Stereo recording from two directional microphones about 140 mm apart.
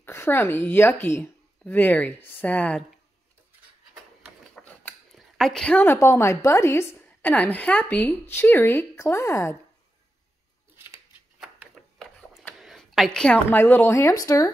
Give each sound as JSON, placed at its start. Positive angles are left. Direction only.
{"t": 0.0, "sound": "a woman's voice", "side_deg": 20}
{"t": 4.6, "sound": "mechanisms", "side_deg": 5}
{"t": 5.4, "sound": "a woman's voice", "side_deg": 5}
{"t": 12.0, "sound": "a sound", "side_deg": 5}
{"t": 12.5, "sound": "speech", "side_deg": 0}